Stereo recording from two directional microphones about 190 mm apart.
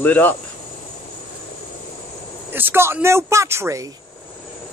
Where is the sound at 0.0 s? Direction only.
10° left (ahead or behind).